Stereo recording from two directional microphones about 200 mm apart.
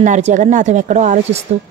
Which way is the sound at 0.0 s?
40° right (ahead or behind).